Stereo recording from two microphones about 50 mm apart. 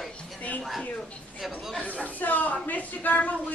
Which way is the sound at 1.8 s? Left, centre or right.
Left.